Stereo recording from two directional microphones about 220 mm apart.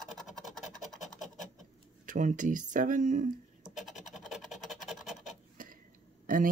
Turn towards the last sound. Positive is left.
turn(degrees=-40)  # may be behind; listen again after turning